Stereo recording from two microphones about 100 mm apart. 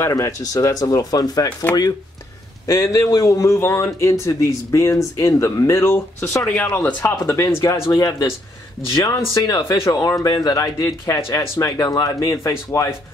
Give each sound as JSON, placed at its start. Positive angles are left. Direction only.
{"t": 0.0, "sound": "speech", "side_deg": 30}
{"t": 2.6, "sound": "speech", "side_deg": 30}
{"t": 6.5, "sound": "speech", "side_deg": 15}